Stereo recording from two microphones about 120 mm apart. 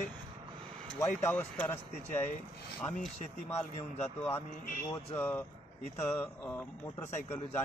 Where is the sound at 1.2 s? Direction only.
15° left (ahead or behind).